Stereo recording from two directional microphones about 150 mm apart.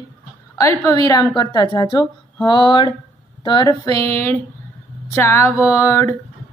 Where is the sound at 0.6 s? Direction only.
20° left (ahead or behind).